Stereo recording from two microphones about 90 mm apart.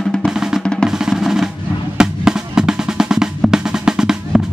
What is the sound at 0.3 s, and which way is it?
Drum, 5° right (ahead or behind).